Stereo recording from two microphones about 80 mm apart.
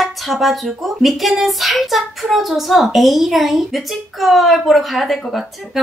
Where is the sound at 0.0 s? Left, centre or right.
Centre.